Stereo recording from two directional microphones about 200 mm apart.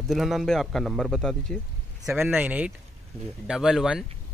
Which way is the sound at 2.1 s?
10° right (ahead or behind).